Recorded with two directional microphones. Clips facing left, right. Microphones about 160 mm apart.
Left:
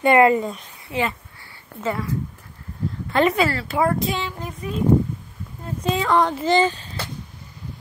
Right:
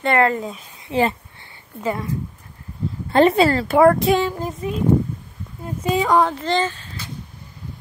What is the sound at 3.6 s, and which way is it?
Speech, 65° right (ahead or behind).